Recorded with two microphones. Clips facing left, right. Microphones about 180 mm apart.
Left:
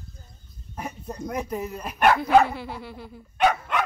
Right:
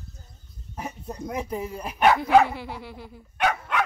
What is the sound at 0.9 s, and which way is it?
Speech, 10° right (ahead or behind).